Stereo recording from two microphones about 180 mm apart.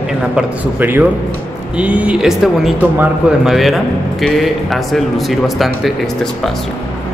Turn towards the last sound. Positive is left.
turn(degrees=0)  # may be behind; listen again after turning